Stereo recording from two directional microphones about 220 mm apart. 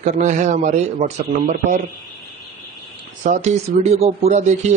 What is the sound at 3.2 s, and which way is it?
Speech, 30° right (ahead or behind).